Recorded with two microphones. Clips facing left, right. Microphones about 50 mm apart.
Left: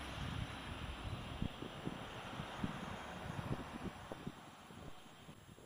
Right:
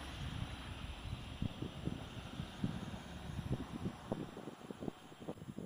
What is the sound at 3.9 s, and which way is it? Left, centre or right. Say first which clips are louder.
Vehicle: right 6 dB; centre.